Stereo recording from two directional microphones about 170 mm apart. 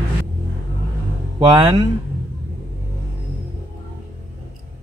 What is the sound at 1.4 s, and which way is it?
Speech, 25° right (ahead or behind).